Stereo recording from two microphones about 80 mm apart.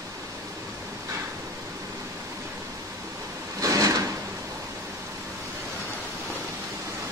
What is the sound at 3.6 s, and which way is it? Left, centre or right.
Drawer open or close, right.